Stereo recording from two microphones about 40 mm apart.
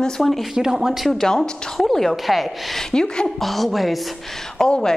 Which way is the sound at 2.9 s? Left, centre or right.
Centre.